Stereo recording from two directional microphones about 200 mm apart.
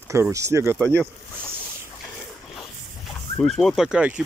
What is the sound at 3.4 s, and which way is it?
Speech, centre (ahead or behind).